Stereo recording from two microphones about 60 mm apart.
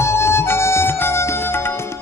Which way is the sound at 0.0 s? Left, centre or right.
Left.